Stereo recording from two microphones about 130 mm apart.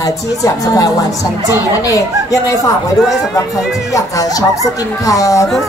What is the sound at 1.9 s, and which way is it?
Speech, 25° left (ahead or behind).